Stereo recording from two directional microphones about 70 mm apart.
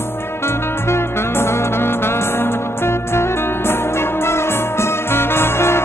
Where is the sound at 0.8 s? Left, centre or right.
Left.